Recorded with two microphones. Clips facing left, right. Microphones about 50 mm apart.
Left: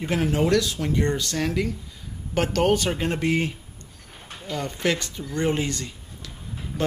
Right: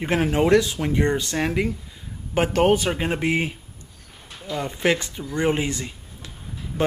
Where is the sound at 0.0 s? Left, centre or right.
Right.